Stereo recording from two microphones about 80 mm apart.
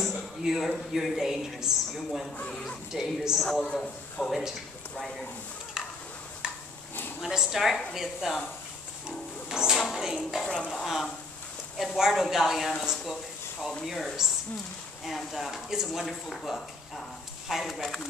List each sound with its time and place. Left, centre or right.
0.0 s a sound: centre
0.9 s speech: centre
2.3 s speech: centre
2.9 s speech: centre
3.4 s a man's voice: centre
5.8 s stir: centre
7.2 s speech: centre
9.5 s speech: centre
10.4 s a man's voice: centre
12.8 s a sound: centre
13.8 s speech: centre